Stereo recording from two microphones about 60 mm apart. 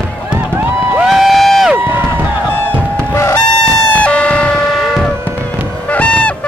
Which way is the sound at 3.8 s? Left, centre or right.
Left.